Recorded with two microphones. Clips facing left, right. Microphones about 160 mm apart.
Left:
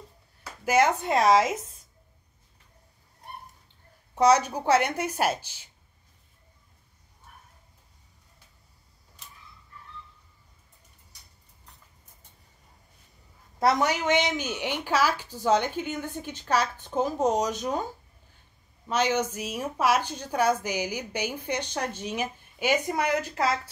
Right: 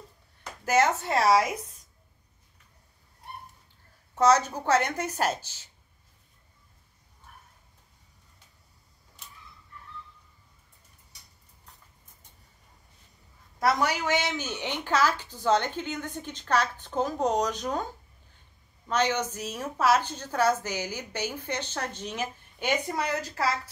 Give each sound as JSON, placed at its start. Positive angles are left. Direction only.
{"t": 0.4, "sound": "speech", "side_deg": 10}
{"t": 4.1, "sound": "a woman's voice", "side_deg": 10}
{"t": 13.6, "sound": "a woman's voice", "side_deg": 25}
{"t": 18.9, "sound": "a woman's voice", "side_deg": 10}